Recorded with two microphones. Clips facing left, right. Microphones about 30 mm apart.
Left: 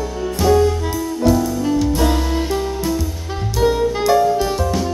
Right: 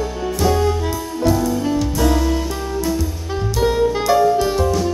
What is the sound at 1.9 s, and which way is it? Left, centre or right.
Music, centre.